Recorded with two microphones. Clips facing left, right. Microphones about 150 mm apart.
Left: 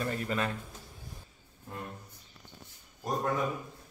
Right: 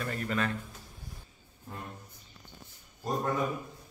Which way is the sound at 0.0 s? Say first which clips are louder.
Even; 15° left (ahead or behind).